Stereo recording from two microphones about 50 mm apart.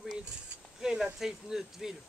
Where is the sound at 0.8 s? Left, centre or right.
Centre.